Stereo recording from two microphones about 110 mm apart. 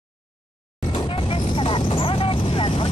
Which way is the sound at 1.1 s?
55° left (ahead or behind).